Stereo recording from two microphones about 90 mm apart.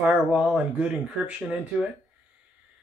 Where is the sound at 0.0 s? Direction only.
10° right (ahead or behind).